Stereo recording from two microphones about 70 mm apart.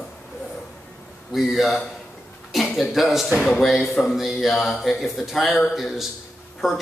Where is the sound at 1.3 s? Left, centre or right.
Centre.